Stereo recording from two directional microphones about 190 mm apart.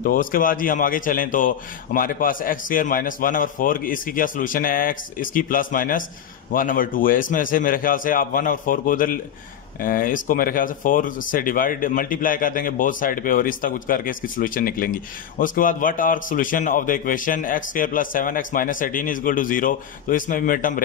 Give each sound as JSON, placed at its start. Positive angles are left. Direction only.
{"t": 0.0, "sound": "speech", "side_deg": 45}